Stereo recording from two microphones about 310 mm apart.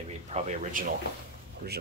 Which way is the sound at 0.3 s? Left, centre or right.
Right.